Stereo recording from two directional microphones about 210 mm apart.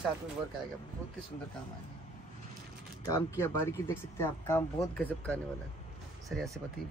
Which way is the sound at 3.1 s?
15° left (ahead or behind).